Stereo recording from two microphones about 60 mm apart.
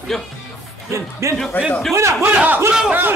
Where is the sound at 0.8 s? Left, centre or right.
Right.